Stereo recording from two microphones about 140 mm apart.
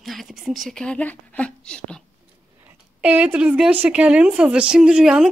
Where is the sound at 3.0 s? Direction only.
10° right (ahead or behind).